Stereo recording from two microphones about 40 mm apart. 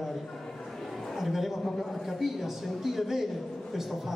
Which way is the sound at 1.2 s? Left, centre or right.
Centre.